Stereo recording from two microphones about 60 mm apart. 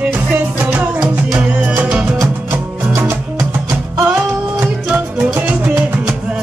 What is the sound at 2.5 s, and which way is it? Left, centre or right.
Music, right.